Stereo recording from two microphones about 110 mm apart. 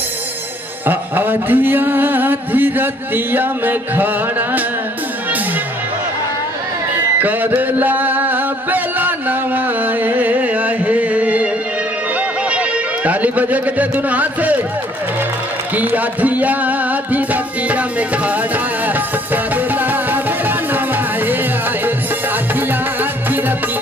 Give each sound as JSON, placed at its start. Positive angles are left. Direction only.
{"t": 0.8, "sound": "a sound", "side_deg": -20}
{"t": 7.2, "sound": "music", "side_deg": -15}
{"t": 12.4, "sound": "music", "side_deg": -10}
{"t": 15.7, "sound": "music", "side_deg": -15}
{"t": 19.3, "sound": "music", "side_deg": -15}